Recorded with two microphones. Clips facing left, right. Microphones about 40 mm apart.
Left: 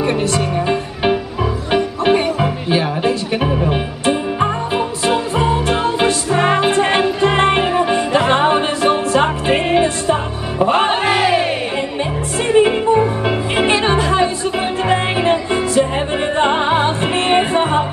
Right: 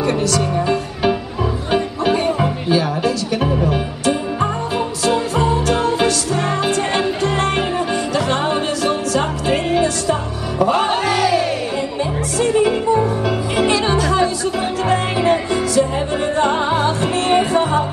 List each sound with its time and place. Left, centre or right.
0.0 s music: left
12.5 s music: left